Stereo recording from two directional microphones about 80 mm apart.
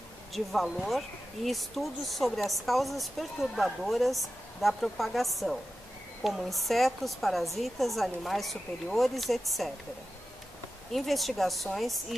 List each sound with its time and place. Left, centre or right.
0.3 s speech: centre
10.9 s speech: centre